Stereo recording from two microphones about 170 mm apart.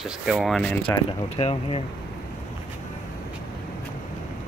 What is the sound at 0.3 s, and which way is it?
Speech, centre (ahead or behind).